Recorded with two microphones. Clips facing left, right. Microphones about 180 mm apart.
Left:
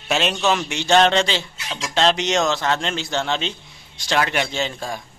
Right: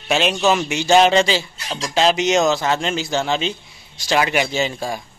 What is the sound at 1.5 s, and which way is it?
Speech, 35° right (ahead or behind).